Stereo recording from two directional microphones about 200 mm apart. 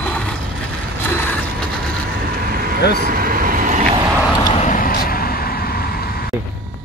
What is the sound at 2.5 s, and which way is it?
Vehicle, 45° right (ahead or behind).